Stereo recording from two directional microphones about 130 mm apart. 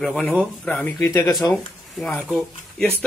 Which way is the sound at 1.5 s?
10° left (ahead or behind).